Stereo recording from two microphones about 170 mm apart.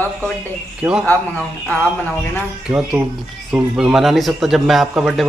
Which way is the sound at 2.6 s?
5° right (ahead or behind).